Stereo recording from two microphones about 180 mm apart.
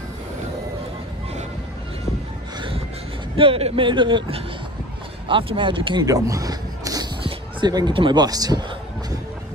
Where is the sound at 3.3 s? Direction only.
30° right (ahead or behind).